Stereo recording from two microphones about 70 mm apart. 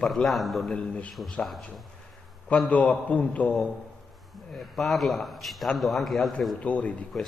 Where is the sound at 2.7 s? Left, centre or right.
Left.